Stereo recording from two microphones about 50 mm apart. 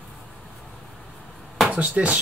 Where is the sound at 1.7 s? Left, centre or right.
Right.